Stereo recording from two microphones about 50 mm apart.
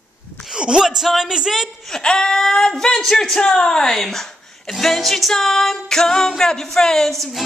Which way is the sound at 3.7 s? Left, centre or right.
Centre.